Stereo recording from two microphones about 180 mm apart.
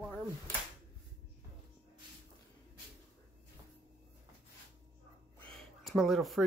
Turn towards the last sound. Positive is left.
turn(degrees=0)  # may be behind; listen again after turning